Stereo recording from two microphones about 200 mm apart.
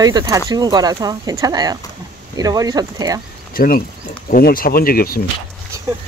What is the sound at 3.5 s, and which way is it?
Speech, 45° left (ahead or behind).